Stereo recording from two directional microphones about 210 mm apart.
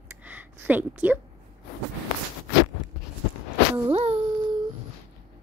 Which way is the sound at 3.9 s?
30° right (ahead or behind).